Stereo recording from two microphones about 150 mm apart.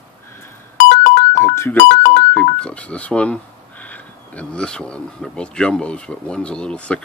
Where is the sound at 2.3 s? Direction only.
10° left (ahead or behind).